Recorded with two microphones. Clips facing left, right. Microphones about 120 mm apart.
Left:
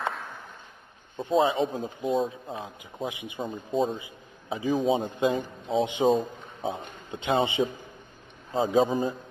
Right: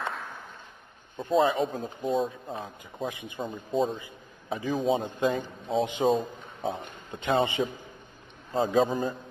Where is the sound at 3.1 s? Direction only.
15° left (ahead or behind).